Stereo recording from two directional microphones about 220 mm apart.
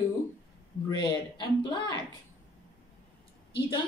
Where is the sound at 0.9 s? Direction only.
20° left (ahead or behind).